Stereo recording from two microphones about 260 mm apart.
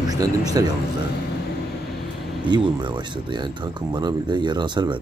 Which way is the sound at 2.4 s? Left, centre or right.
Centre.